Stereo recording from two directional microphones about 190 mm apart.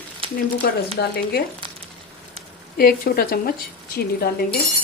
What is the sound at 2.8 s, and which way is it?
A woman's voice, 50° left (ahead or behind).